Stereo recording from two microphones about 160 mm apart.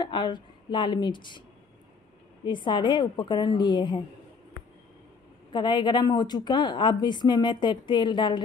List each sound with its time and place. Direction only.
0.0 s a woman's voice: 30° left (ahead or behind)
2.4 s a woman's voice: 30° left (ahead or behind)
5.5 s a woman's voice: 30° left (ahead or behind)